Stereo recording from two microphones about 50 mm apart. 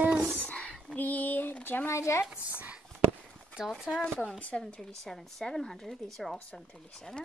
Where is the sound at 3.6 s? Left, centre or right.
Centre.